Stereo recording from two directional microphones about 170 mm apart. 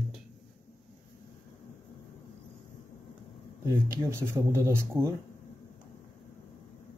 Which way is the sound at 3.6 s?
15° right (ahead or behind).